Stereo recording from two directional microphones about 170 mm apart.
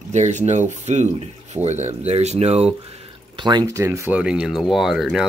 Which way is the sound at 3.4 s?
25° right (ahead or behind).